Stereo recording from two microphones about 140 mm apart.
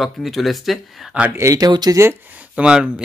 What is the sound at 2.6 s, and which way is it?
Speech, 5° right (ahead or behind).